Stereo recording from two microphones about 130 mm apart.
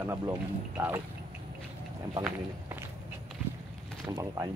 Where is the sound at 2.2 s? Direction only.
15° right (ahead or behind).